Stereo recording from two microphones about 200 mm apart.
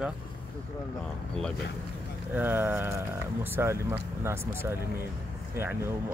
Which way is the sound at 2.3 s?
10° right (ahead or behind).